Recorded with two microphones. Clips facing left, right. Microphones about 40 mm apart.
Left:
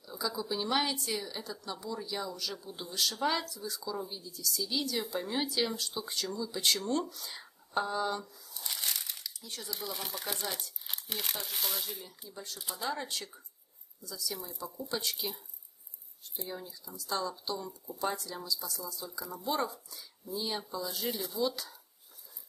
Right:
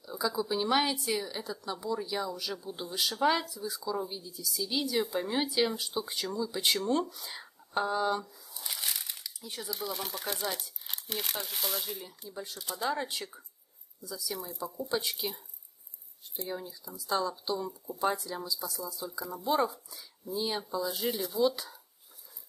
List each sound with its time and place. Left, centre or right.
0.0 s a woman's voice: centre
12.3 s a woman's voice: centre
16.4 s a woman's voice: centre
21.4 s a woman's voice: centre